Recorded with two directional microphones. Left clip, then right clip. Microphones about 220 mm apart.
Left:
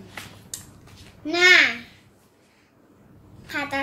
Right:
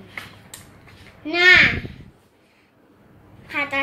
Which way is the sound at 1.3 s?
20° left (ahead or behind).